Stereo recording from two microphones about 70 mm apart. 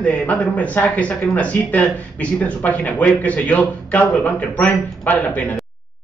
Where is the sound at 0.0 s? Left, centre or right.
Centre.